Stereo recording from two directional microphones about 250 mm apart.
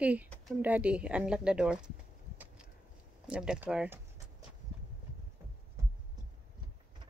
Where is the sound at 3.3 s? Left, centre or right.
Centre.